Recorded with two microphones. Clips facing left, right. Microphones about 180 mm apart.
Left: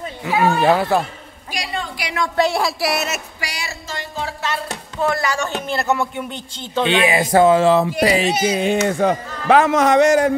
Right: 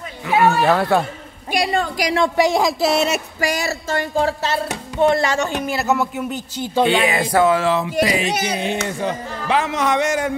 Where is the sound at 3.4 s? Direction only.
45° right (ahead or behind).